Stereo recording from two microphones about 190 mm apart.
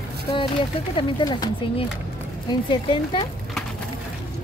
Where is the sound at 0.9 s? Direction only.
25° left (ahead or behind).